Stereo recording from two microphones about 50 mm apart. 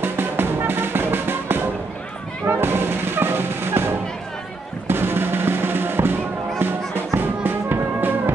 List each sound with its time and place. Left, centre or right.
0.0 s music: right